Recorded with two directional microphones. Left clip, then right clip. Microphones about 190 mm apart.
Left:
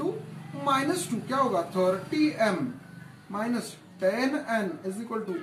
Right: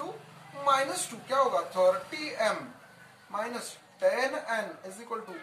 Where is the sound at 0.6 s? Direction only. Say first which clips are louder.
Even; 20° right (ahead or behind).